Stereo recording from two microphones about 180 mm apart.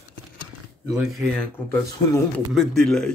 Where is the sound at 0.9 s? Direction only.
Centre (ahead or behind).